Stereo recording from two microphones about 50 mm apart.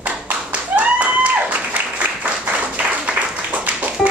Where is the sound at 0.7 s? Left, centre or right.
Right.